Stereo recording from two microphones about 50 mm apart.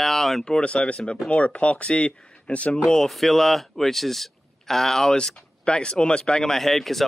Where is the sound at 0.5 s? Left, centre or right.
Left.